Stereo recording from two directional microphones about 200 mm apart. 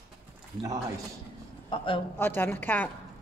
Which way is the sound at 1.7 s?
25° left (ahead or behind).